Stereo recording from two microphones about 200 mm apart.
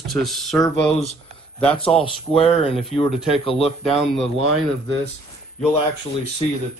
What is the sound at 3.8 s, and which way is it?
Speech, centre (ahead or behind).